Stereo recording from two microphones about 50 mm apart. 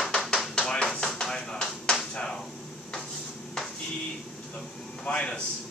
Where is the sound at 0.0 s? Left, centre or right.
Centre.